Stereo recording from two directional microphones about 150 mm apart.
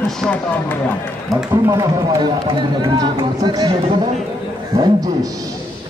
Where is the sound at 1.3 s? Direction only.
15° right (ahead or behind).